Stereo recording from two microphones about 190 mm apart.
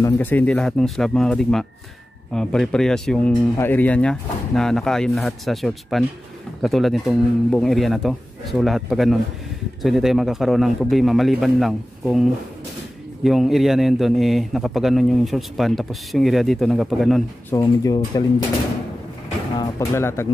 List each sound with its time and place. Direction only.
0.0 s a man's voice: 10° left (ahead or behind)
17.5 s speech: 20° left (ahead or behind)
19.6 s speech: 15° left (ahead or behind)